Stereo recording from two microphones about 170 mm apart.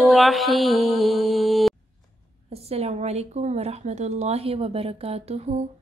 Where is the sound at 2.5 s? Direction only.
35° right (ahead or behind).